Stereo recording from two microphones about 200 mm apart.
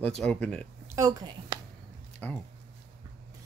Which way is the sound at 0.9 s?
15° right (ahead or behind).